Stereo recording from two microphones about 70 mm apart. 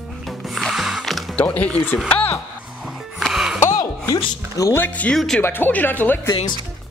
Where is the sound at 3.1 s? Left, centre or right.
Centre.